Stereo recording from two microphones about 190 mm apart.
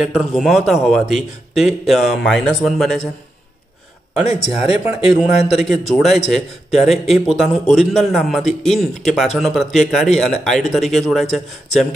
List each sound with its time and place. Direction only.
0.0 s speech: centre (ahead or behind)
4.2 s speech: 35° left (ahead or behind)
5.5 s speech: centre (ahead or behind)